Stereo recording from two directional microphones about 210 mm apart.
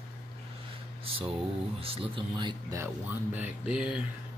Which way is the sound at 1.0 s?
25° right (ahead or behind).